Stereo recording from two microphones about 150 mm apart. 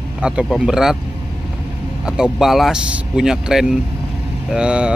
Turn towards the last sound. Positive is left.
turn(degrees=-5)  # may be behind; listen again after turning